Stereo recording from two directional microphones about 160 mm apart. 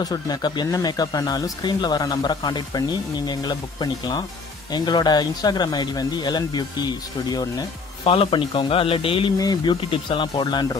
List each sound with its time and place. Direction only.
0.0 s speech: 25° left (ahead or behind)
8.0 s speech: 35° left (ahead or behind)